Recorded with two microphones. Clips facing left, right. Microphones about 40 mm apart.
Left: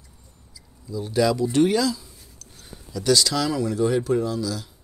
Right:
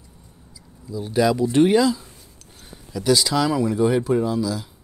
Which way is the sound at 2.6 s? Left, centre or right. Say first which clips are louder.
Right 2 dB; centre.